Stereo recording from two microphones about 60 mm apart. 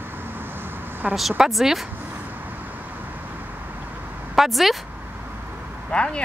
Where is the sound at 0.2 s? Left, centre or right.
Right.